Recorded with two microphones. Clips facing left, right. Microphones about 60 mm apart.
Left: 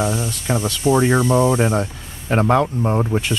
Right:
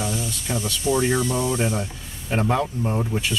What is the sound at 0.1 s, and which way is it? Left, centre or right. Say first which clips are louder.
Speech: left 5 dB; left.